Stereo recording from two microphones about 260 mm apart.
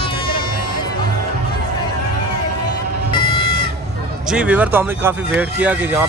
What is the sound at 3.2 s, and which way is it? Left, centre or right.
Chicken, centre.